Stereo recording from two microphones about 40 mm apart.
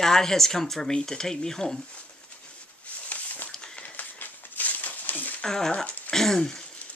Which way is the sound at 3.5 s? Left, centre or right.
Centre.